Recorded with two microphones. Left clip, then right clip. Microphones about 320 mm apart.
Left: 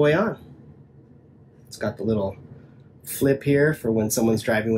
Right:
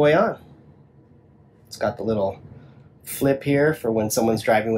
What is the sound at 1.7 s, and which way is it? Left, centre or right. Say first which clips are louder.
Speech: right 2 dB; right.